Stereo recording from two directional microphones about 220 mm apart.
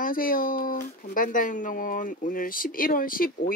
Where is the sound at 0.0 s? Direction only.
40° left (ahead or behind).